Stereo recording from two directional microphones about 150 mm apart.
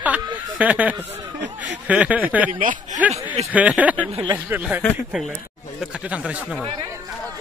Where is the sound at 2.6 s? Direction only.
60° right (ahead or behind).